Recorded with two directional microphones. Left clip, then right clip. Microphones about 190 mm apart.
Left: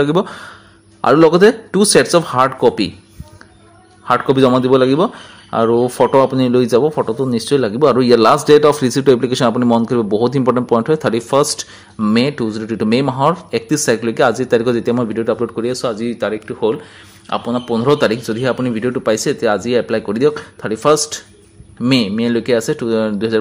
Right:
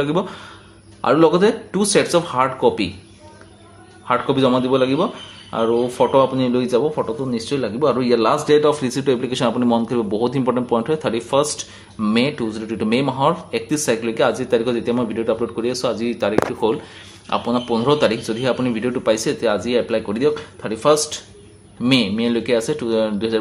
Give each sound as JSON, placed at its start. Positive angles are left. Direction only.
{"t": 0.0, "sound": "speech", "side_deg": 40}
{"t": 4.0, "sound": "speech", "side_deg": 40}